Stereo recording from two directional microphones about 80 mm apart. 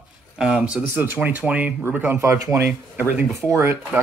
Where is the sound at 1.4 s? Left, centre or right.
Centre.